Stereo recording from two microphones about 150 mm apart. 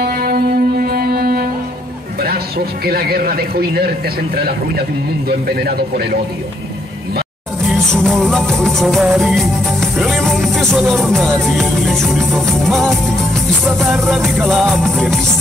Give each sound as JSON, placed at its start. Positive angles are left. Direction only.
{"t": 0.0, "sound": "music", "side_deg": -85}
{"t": 2.2, "sound": "a man's voice", "side_deg": -90}
{"t": 5.3, "sound": "speech", "side_deg": -90}
{"t": 7.6, "sound": "music", "side_deg": 5}